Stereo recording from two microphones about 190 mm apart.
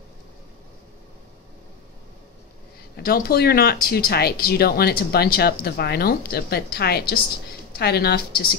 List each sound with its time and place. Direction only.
3.0 s speech: 55° left (ahead or behind)